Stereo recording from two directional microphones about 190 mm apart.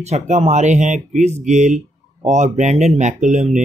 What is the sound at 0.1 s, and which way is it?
Speech, 35° right (ahead or behind).